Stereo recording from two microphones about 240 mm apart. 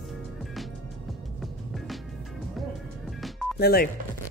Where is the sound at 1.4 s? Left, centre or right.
Centre.